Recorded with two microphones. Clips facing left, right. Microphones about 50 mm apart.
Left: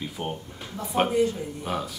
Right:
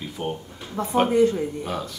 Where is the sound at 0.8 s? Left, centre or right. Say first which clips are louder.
Right 4 dB; right.